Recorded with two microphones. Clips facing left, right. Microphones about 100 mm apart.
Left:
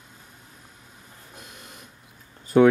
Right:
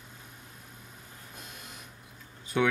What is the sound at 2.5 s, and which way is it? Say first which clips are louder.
Speech: left 11 dB; 40° left (ahead or behind).